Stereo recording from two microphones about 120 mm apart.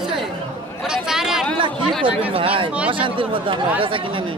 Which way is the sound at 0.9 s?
5° right (ahead or behind).